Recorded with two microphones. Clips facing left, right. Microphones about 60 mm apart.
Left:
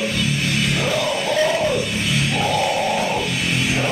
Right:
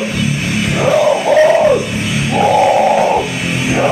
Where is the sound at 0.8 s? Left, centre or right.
Centre.